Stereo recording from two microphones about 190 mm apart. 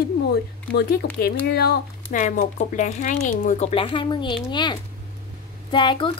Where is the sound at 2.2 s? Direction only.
40° left (ahead or behind).